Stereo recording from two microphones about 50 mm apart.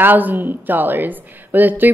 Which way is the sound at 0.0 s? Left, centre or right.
Right.